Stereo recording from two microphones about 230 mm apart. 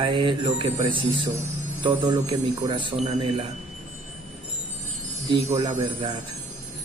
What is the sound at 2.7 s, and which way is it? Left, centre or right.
Speech, right.